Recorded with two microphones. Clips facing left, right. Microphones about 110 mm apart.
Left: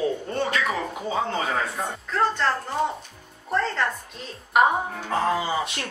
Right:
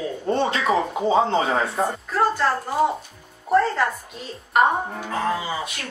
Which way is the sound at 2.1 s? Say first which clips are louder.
Right 1 dB; 10° right (ahead or behind).